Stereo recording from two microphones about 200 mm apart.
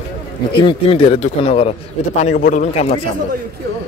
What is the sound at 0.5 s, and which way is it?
A man's voice, 25° left (ahead or behind).